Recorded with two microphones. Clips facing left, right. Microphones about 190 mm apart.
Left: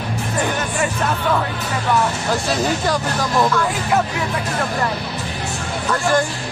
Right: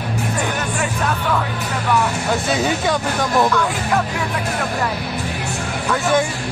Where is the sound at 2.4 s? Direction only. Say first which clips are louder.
Even; centre (ahead or behind).